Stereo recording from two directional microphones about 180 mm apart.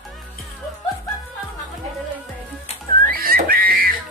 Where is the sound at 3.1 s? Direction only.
55° right (ahead or behind).